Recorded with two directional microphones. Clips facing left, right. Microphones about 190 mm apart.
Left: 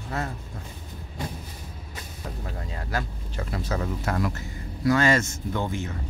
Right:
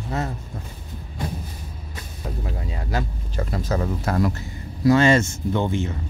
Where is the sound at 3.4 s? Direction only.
40° right (ahead or behind).